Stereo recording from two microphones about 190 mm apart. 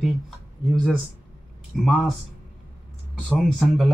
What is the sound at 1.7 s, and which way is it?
Speech, centre (ahead or behind).